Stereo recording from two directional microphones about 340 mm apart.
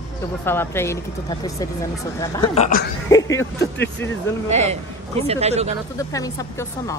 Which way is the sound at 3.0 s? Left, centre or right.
Centre.